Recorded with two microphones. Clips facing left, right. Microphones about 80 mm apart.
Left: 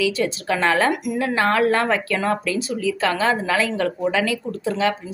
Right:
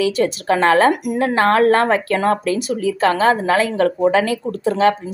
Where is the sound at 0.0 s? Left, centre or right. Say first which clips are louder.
Right 4 dB; right.